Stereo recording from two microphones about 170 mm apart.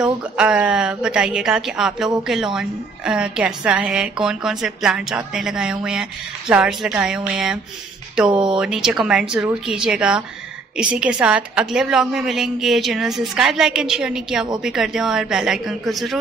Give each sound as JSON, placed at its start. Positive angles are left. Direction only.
{"t": 0.0, "sound": "a woman's voice", "side_deg": -5}